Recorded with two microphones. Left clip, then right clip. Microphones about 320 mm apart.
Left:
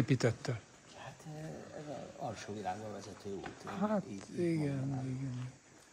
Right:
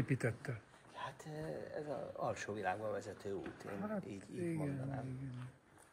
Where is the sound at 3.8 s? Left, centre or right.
Left.